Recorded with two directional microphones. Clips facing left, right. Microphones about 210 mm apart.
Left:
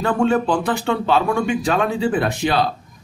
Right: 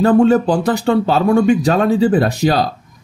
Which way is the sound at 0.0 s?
40° right (ahead or behind).